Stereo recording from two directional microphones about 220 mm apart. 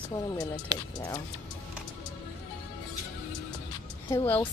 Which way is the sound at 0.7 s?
20° right (ahead or behind).